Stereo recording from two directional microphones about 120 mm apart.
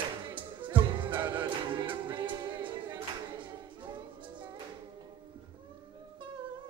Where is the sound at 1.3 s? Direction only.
40° right (ahead or behind).